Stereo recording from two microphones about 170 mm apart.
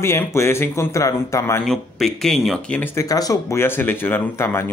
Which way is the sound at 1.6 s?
Centre (ahead or behind).